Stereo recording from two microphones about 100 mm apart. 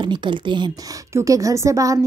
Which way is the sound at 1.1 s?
35° right (ahead or behind).